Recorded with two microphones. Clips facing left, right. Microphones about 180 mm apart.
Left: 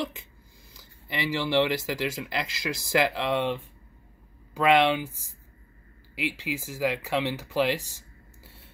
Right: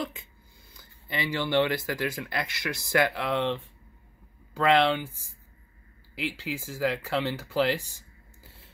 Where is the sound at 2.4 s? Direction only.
90° left.